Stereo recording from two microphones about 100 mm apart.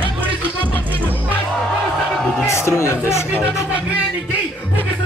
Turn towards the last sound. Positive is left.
turn(degrees=30)  # may be behind; listen again after turning